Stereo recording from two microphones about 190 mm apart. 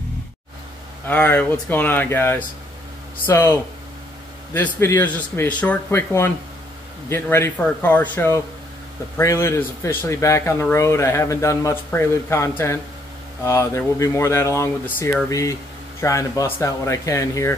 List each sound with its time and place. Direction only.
1.0 s speech: 10° left (ahead or behind)
4.6 s speech: 10° left (ahead or behind)